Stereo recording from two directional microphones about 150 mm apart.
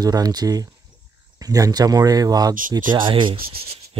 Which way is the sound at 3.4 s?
90° right.